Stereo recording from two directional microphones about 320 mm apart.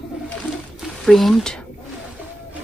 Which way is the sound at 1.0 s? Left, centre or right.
Centre.